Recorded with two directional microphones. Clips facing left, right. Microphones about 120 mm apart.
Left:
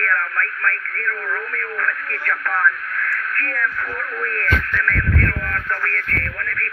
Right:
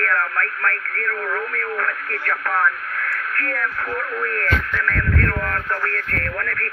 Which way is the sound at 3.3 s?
10° right (ahead or behind).